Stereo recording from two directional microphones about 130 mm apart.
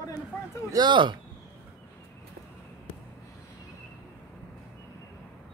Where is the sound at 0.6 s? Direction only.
30° right (ahead or behind).